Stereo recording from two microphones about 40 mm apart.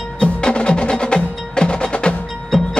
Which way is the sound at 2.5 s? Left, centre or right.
Centre.